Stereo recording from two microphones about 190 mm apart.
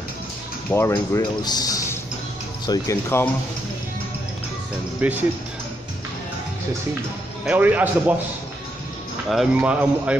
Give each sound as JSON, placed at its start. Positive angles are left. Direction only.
{"t": 0.7, "sound": "speech", "side_deg": 15}
{"t": 5.0, "sound": "speech", "side_deg": -5}
{"t": 7.4, "sound": "speech", "side_deg": -10}
{"t": 9.3, "sound": "speech", "side_deg": -5}